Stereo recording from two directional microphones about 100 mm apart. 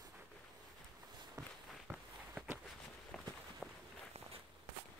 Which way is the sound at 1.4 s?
35° right (ahead or behind).